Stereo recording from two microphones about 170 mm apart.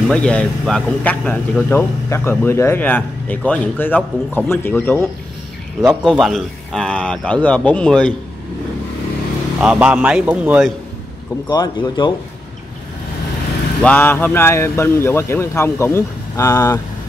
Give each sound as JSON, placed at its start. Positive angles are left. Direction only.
{"t": 0.1, "sound": "speech", "side_deg": 5}
{"t": 5.8, "sound": "a man's voice", "side_deg": 0}
{"t": 9.6, "sound": "a man's voice", "side_deg": -5}
{"t": 11.4, "sound": "speech", "side_deg": 25}
{"t": 13.8, "sound": "speech", "side_deg": 10}